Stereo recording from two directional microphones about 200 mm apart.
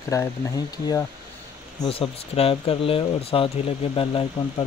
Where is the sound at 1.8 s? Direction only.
25° left (ahead or behind).